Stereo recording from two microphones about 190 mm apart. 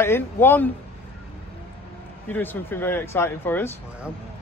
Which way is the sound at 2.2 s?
10° left (ahead or behind).